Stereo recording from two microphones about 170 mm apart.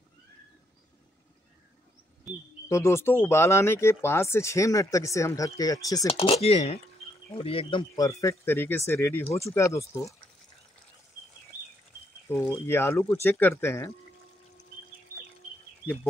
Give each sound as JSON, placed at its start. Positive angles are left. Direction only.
{"t": 2.3, "sound": "speech", "side_deg": 0}
{"t": 2.7, "sound": "speech", "side_deg": 15}
{"t": 6.0, "sound": "speech", "side_deg": 35}
{"t": 7.9, "sound": "speech", "side_deg": 20}
{"t": 12.3, "sound": "speech", "side_deg": 15}